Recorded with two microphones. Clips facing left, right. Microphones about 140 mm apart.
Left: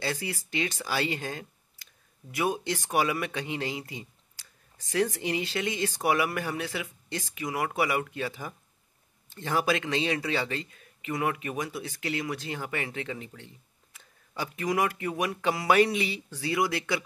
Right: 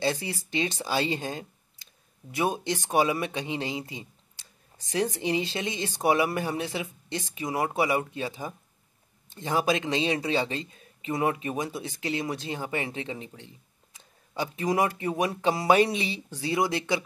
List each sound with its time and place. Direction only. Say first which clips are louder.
0.0 s speech: right 4 dB; 25° right (ahead or behind)